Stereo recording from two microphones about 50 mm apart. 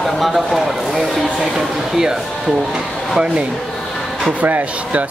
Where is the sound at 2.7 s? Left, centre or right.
Centre.